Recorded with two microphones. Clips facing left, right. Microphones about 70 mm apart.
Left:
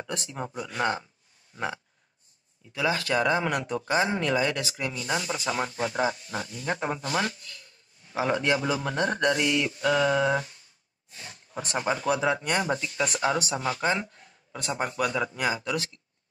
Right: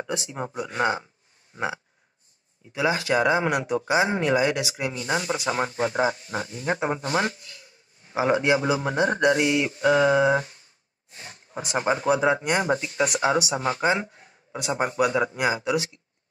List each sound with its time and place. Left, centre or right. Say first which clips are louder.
0.1 s speech: right 2 dB; centre
0.6 s speech: right 4 dB; right
1.5 s a sound: right 3 dB; centre
2.7 s speech: right 3 dB; right
5.1 s speech: right 3 dB; right
11.1 s a sound: right 1 dB; right
11.8 s speech: right 4 dB; right